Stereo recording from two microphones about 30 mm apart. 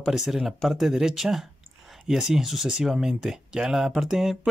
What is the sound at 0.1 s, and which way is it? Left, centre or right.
Speech, centre.